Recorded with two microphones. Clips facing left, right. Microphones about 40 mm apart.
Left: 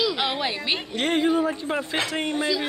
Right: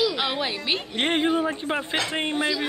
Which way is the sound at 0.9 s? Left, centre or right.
Right.